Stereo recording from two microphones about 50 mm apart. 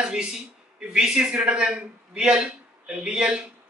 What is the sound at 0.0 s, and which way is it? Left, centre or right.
A man's voice, centre.